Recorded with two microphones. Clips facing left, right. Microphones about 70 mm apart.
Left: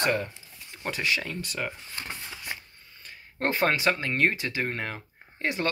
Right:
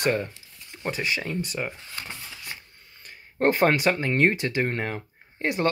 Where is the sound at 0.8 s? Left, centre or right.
Right.